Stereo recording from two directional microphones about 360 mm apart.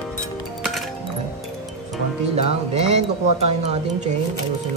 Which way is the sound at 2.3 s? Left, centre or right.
Centre.